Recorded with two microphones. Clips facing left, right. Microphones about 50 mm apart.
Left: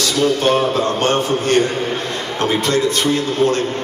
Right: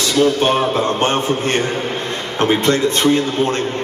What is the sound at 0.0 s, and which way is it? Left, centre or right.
A man's voice, right.